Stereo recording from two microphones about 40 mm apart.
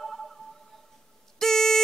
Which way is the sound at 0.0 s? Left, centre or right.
Centre.